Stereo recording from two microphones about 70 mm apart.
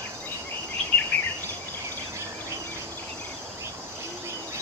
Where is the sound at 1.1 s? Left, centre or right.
Centre.